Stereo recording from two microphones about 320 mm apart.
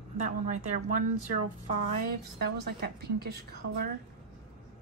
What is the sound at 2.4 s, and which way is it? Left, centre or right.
A woman's voice, right.